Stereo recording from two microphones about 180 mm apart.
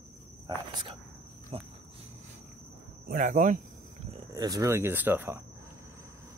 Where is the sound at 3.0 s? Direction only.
45° right (ahead or behind).